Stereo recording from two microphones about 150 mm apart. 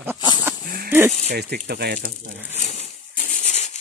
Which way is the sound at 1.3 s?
90° right.